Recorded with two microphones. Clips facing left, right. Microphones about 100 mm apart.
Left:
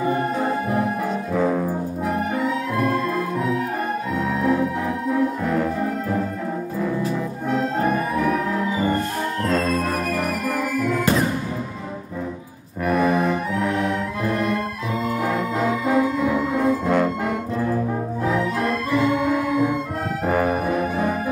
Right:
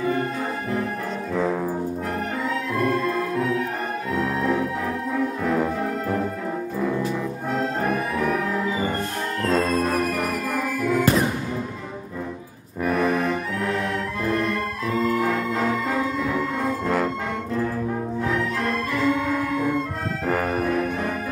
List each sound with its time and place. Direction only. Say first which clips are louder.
0.0 s music: left 3 dB; 20° left (ahead or behind)
1.3 s brass instrument: left 2 dB; 5° left (ahead or behind)
2.3 s music: left 3 dB; 5° left (ahead or behind)
4.2 s music: left 2 dB; centre (ahead or behind)
7.5 s music: left 3 dB; centre (ahead or behind)
12.8 s music: left 2 dB; 5° left (ahead or behind)
18.2 s music: left 4 dB; 10° left (ahead or behind)
20.2 s brass instrument: left 2 dB; 5° left (ahead or behind)